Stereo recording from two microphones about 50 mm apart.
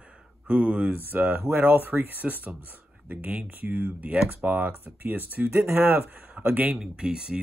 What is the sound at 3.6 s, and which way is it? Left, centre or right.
Speech, right.